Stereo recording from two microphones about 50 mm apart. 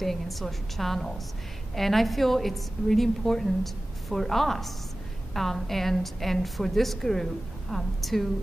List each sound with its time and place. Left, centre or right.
0.0 s a woman's voice: centre